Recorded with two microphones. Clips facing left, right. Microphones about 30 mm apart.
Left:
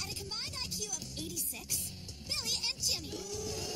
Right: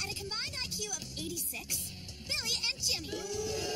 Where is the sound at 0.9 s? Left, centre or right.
Right.